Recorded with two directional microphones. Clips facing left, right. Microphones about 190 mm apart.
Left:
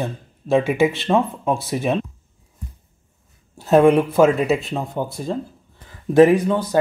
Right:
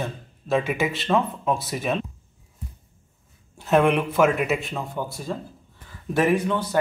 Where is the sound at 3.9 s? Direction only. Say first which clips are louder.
Left 5 dB; 35° left (ahead or behind).